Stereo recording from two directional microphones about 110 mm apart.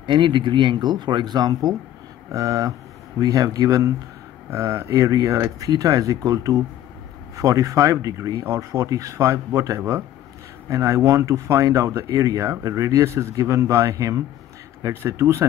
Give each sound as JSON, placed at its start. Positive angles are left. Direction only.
{"t": 0.0, "sound": "speech", "side_deg": -45}